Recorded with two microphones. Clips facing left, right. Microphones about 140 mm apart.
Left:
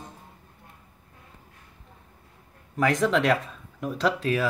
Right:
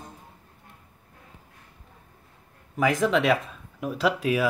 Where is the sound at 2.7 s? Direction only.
5° right (ahead or behind).